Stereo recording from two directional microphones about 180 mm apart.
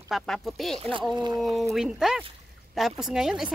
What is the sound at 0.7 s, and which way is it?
Speech, 30° right (ahead or behind).